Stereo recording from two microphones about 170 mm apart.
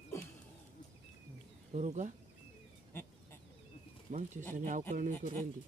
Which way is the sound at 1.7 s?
45° right (ahead or behind).